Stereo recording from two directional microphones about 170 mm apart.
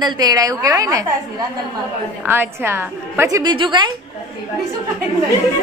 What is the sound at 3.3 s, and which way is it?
Speech, 25° right (ahead or behind).